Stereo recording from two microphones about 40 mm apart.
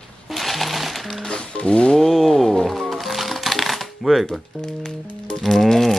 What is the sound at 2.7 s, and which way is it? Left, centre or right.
Shuffling cards, centre.